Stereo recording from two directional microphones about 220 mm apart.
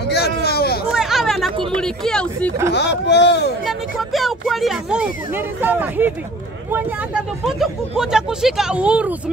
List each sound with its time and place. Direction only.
0.1 s a sound: 50° left (ahead or behind)
0.9 s chatter: centre (ahead or behind)
1.7 s speech: 5° left (ahead or behind)
2.7 s speech: 50° left (ahead or behind)
3.6 s speech: centre (ahead or behind)